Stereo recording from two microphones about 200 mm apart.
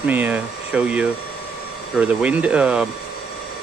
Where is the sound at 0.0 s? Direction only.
10° right (ahead or behind).